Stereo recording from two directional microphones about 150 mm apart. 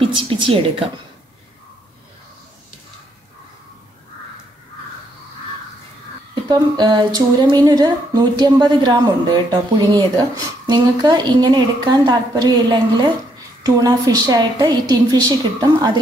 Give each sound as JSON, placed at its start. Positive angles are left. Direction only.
{"t": 0.0, "sound": "a woman's voice", "side_deg": -35}
{"t": 6.5, "sound": "speech", "side_deg": -30}